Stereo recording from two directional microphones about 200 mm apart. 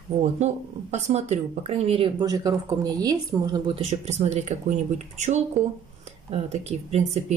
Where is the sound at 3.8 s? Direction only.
35° right (ahead or behind).